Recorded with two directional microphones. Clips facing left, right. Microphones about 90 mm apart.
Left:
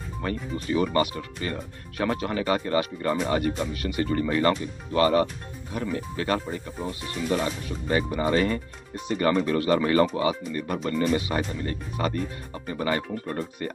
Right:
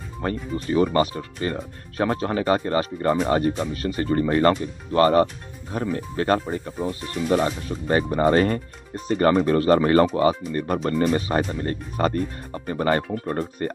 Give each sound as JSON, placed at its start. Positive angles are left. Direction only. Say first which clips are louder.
{"t": 0.2, "sound": "speech", "louder": "right 4 dB", "side_deg": -35}